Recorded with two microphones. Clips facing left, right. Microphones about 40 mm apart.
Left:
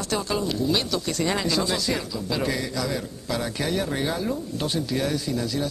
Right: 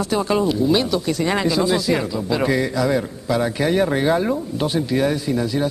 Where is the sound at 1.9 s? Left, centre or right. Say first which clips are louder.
Right 7 dB; right.